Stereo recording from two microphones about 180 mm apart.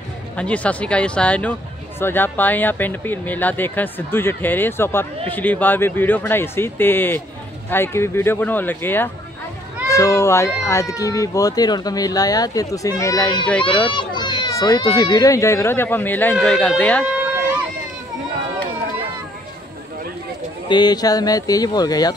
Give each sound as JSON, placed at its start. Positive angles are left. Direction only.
{"t": 0.4, "sound": "speech", "side_deg": 5}
{"t": 20.6, "sound": "speech", "side_deg": 25}